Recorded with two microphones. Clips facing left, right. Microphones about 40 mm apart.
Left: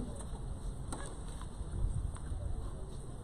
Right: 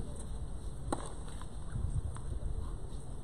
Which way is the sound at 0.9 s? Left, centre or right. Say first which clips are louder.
Right 8 dB; right.